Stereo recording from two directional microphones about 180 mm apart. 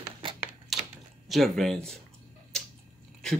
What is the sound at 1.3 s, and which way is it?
Speech, centre (ahead or behind).